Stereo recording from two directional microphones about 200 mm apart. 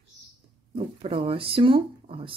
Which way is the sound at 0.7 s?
30° right (ahead or behind).